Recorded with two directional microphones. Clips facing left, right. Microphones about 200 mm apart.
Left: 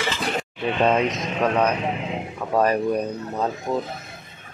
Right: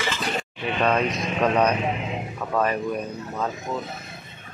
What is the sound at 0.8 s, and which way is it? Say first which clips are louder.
Speech: left 1 dB; 20° left (ahead or behind).